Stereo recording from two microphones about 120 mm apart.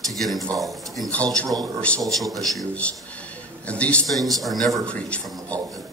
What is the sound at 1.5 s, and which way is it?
Speech, 35° right (ahead or behind).